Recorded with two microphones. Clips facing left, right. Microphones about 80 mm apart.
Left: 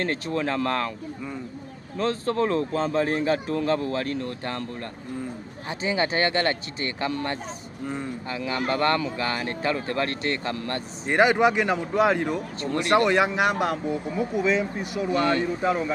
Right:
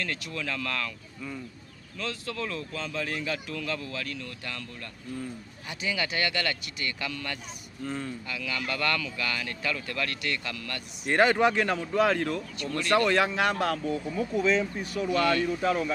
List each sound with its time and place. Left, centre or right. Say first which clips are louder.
0.0 s speech: left 8 dB; left
2.0 s speech: left 10 dB; left
5.7 s speech: left 6 dB; left
7.8 s speech: left 2 dB; centre
8.3 s speech: left 9 dB; left
11.1 s a man's voice: left 3 dB; centre
15.0 s speech: left 2 dB; left